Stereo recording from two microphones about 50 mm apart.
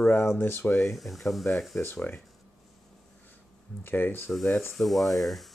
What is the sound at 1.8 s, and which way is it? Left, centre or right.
Speech, left.